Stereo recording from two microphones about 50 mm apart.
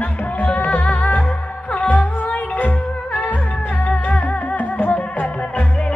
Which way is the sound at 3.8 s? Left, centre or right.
Left.